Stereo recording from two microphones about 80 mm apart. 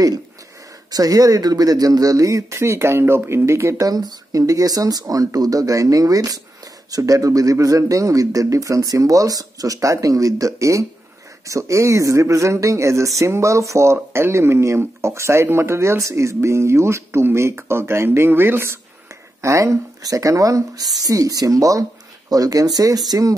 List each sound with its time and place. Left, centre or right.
0.9 s speech: right
19.4 s speech: right